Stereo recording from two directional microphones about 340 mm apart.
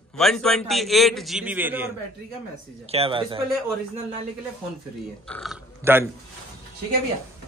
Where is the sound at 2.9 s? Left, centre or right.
Centre.